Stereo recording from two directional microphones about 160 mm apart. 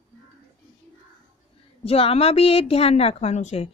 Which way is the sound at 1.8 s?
35° left (ahead or behind).